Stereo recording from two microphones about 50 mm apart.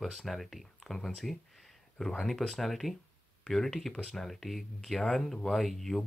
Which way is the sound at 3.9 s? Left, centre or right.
Centre.